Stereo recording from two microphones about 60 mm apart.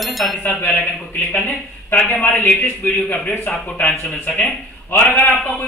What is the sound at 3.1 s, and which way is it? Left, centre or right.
Speech, left.